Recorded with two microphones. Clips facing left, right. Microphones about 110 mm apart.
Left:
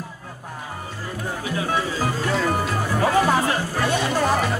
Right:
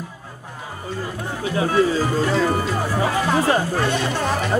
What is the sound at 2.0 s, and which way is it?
Speech, 5° left (ahead or behind).